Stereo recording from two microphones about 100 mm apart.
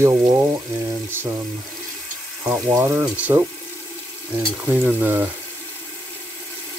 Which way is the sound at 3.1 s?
15° right (ahead or behind).